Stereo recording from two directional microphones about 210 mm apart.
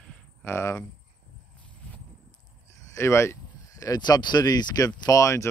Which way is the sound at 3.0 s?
15° left (ahead or behind).